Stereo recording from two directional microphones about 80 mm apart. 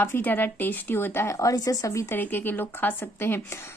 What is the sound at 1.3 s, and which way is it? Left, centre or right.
Speech, left.